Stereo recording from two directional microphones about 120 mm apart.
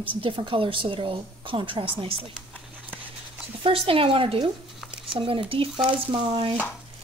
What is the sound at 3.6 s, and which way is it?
A woman's voice, 50° right (ahead or behind).